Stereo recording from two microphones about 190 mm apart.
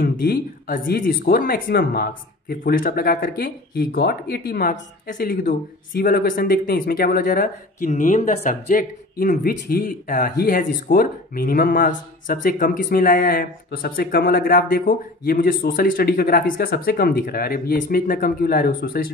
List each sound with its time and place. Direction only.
0.0 s speech: 50° left (ahead or behind)